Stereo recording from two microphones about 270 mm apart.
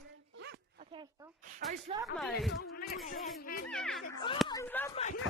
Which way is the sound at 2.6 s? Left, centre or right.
Left.